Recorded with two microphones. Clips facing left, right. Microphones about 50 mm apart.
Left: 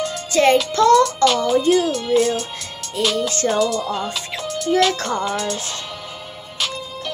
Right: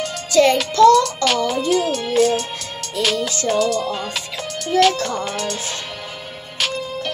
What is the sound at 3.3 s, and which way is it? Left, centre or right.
Music, left.